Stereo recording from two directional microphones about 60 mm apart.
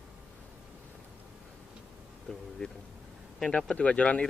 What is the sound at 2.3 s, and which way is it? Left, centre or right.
Speech, centre.